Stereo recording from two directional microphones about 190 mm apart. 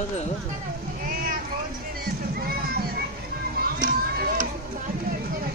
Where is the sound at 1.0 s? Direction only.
50° right (ahead or behind).